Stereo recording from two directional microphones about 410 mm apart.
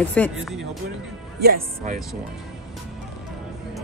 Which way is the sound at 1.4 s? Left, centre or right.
Right.